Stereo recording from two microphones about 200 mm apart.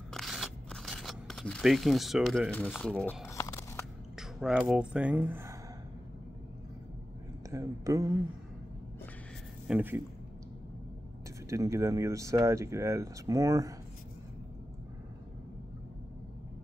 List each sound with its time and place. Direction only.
0.1 s scissors: centre (ahead or behind)
2.9 s speech: centre (ahead or behind)
3.3 s a sound: 15° left (ahead or behind)
4.2 s speech: 5° right (ahead or behind)
7.5 s speech: 15° right (ahead or behind)
9.7 s speech: 10° right (ahead or behind)
11.4 s speech: 15° right (ahead or behind)